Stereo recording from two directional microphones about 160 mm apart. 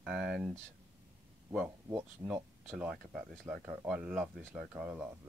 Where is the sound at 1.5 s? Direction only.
10° right (ahead or behind).